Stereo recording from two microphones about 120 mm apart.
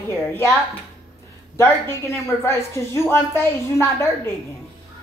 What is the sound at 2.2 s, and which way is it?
Speech, 25° left (ahead or behind).